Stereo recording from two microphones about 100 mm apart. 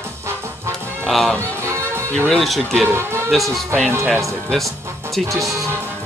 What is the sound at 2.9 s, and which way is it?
Speech, 25° right (ahead or behind).